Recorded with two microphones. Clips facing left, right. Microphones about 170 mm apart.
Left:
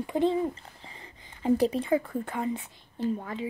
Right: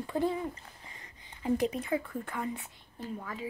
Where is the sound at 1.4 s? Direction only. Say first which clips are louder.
Left 5 dB; 30° left (ahead or behind).